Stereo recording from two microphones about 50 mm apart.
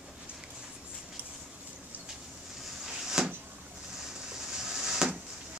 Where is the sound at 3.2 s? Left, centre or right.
Centre.